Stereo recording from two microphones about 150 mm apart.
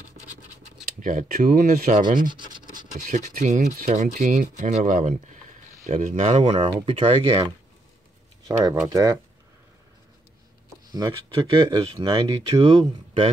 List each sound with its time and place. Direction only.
0.8 s speech: 65° right (ahead or behind)
2.2 s scratch: 30° right (ahead or behind)
3.0 s speech: 55° right (ahead or behind); by 7.5 s 40° right (ahead or behind)
8.8 s speech: 25° right (ahead or behind)
10.9 s speech: 25° right (ahead or behind)
11.3 s speech: 40° right (ahead or behind)